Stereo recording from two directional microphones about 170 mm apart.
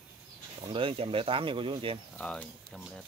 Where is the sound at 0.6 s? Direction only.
30° right (ahead or behind).